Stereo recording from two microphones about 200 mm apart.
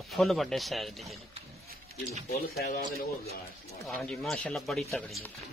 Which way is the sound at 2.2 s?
50° left (ahead or behind).